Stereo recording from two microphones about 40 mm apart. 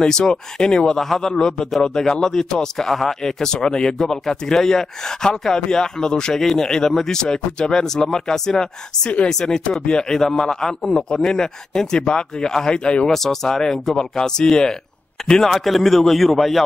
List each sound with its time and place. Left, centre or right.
0.0 s speech: centre
0.9 s speech: centre
13.1 s speech: centre